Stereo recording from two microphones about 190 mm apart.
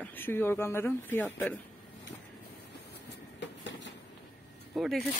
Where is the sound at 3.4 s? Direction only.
70° left (ahead or behind).